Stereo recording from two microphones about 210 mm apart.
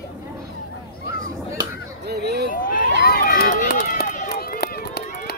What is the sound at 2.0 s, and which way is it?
Hubbub, 50° right (ahead or behind).